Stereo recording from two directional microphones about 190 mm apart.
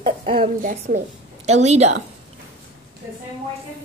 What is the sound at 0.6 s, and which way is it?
A woman's voice, 45° right (ahead or behind).